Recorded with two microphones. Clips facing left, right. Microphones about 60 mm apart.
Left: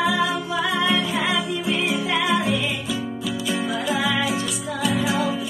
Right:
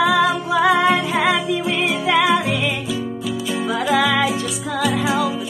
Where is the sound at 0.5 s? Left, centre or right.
Right.